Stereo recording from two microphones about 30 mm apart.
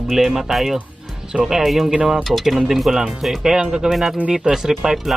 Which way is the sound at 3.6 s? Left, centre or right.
Right.